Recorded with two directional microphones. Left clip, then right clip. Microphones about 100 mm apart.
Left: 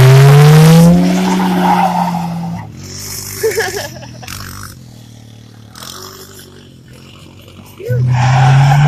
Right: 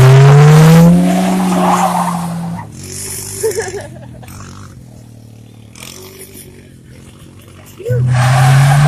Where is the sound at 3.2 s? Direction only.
20° left (ahead or behind).